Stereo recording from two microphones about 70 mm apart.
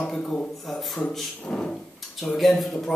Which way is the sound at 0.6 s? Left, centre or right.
Centre.